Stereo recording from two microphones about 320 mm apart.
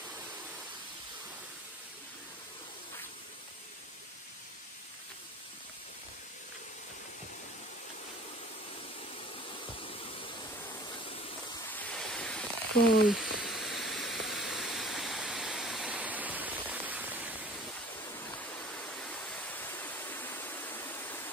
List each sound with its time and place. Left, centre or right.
9.5 s waterfall: centre
11.7 s waves: centre
13.1 s a sound: centre
18.0 s waterfall: centre